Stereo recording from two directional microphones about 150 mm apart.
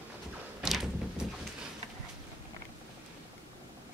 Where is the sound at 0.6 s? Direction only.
5° right (ahead or behind).